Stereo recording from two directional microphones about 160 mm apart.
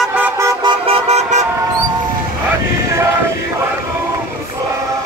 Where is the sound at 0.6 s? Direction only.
35° right (ahead or behind).